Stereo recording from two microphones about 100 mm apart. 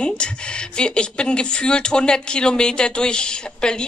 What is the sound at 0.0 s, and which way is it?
Speech, 10° left (ahead or behind).